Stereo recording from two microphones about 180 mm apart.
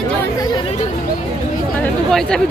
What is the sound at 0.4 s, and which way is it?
Chatter, 25° left (ahead or behind).